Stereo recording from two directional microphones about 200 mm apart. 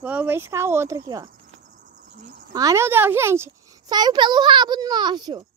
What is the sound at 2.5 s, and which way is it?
A woman's voice, 15° right (ahead or behind).